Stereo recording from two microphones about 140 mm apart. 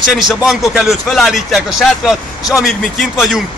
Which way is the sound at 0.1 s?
5° right (ahead or behind).